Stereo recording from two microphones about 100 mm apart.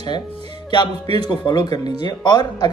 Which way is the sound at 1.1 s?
50° left (ahead or behind).